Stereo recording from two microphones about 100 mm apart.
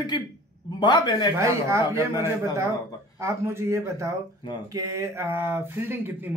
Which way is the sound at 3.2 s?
25° right (ahead or behind).